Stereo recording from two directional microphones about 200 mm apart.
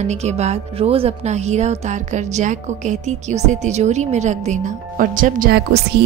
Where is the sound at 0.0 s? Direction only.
35° right (ahead or behind).